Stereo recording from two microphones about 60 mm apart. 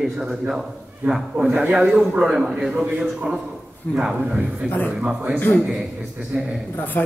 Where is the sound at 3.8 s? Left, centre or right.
Left.